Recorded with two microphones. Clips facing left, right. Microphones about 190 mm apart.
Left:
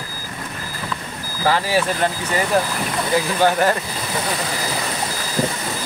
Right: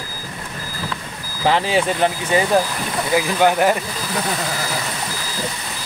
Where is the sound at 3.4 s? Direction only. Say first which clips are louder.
Right 2 dB; 15° right (ahead or behind).